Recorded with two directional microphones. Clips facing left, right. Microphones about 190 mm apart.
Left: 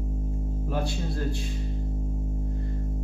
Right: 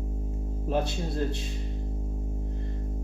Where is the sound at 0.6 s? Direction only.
20° right (ahead or behind).